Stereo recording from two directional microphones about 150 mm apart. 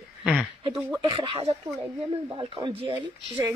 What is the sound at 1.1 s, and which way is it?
Speech, 35° right (ahead or behind).